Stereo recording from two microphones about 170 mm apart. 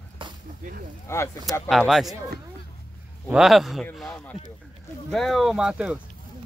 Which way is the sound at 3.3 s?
Centre (ahead or behind).